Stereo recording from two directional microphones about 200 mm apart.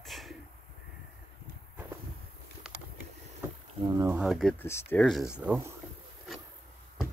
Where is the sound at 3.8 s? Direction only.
15° right (ahead or behind).